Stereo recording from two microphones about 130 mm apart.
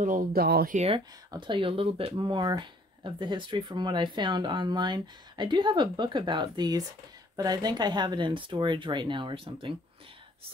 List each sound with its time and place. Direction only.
0.0 s speech: 90° right
1.3 s speech: 40° right (ahead or behind)